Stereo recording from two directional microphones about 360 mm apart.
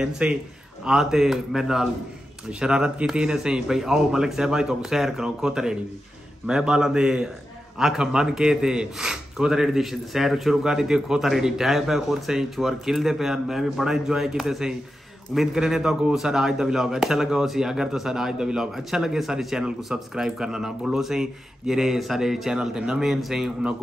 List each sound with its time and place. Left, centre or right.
0.0 s speech: centre